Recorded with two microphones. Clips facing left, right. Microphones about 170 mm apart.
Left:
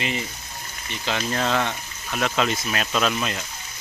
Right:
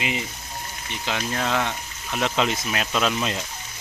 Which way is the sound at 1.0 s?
5° right (ahead or behind).